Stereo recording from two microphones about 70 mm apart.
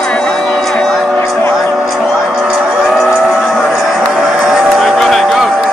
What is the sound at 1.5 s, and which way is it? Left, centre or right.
Vehicle, centre.